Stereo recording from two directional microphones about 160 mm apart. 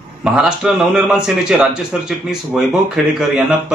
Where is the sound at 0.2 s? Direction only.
Centre (ahead or behind).